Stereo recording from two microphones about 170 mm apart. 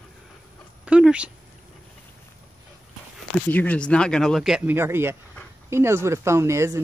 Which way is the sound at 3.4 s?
10° left (ahead or behind).